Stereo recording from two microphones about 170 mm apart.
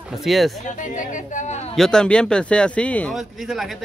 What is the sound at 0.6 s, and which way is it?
Speech, 45° left (ahead or behind).